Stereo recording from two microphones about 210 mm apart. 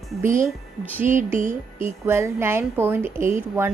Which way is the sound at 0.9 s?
10° right (ahead or behind).